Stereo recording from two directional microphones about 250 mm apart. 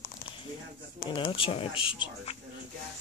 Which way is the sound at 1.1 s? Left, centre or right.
Left.